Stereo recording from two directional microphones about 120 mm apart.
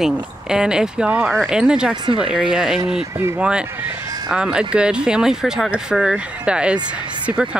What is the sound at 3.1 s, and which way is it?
Speech, 20° right (ahead or behind).